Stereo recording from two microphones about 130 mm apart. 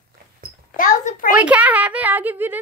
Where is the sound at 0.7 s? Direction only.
80° left.